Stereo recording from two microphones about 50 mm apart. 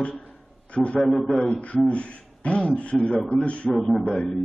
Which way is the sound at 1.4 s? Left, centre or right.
Left.